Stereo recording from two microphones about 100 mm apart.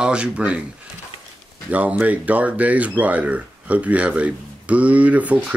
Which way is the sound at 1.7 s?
15° right (ahead or behind).